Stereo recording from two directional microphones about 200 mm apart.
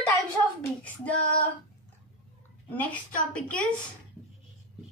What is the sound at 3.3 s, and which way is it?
Speech, 5° left (ahead or behind).